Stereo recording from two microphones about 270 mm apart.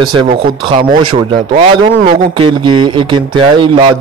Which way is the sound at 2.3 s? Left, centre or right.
Centre.